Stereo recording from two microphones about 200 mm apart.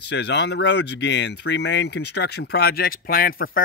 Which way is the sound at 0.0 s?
55° left (ahead or behind).